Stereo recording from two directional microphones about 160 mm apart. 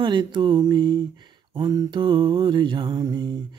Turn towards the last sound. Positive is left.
turn(degrees=-25)  # may be behind; listen again after turning